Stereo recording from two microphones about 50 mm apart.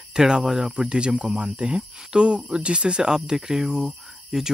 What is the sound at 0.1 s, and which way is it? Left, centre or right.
Speech, centre.